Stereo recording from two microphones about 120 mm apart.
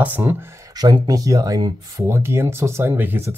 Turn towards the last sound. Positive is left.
turn(degrees=-20)  # may be behind; listen again after turning